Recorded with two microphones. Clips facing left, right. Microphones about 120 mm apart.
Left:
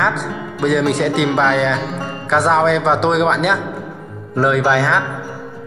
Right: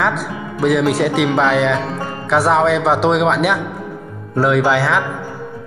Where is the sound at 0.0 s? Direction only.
5° right (ahead or behind).